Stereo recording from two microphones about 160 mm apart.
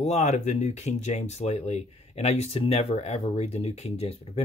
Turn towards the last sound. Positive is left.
turn(degrees=40)  # may be behind; listen again after turning